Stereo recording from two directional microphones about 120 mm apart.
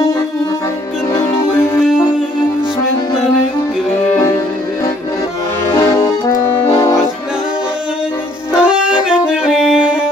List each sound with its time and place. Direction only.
1.1 s music: 20° left (ahead or behind)
5.8 s accordion: 25° left (ahead or behind)
8.6 s music: 5° right (ahead or behind)